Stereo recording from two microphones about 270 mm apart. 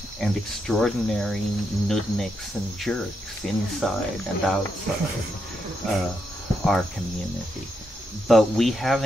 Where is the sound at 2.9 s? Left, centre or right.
Centre.